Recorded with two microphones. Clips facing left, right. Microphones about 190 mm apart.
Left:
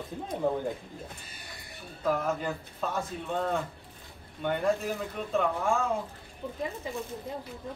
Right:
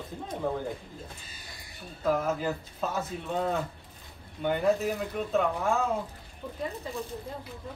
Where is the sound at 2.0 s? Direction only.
5° right (ahead or behind).